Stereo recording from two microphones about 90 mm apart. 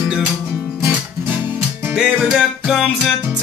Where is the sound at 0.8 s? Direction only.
20° right (ahead or behind).